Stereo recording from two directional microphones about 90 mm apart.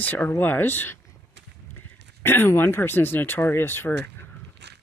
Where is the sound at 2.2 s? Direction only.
25° left (ahead or behind).